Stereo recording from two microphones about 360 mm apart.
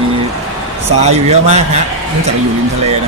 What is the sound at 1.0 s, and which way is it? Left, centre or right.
Speech, centre.